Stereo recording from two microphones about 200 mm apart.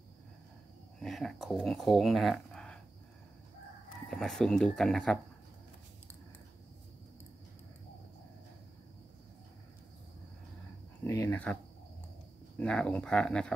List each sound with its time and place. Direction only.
0.9 s speech: centre (ahead or behind)
4.1 s speech: centre (ahead or behind)
11.1 s speech: 15° left (ahead or behind)
12.5 s speech: 5° left (ahead or behind)